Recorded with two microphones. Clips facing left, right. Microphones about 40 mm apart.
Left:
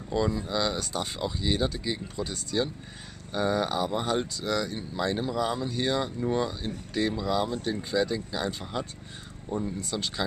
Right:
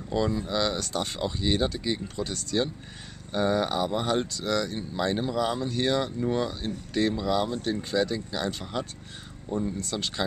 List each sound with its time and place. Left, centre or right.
0.1 s speech: centre
1.2 s speech: centre
2.1 s speech: centre
5.6 s speech: centre